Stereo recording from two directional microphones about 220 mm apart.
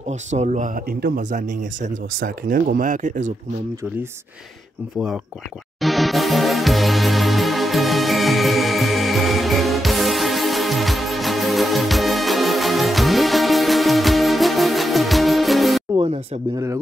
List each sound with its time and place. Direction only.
0.3 s speech: 35° right (ahead or behind)
5.8 s music: centre (ahead or behind)
16.0 s speech: 20° right (ahead or behind)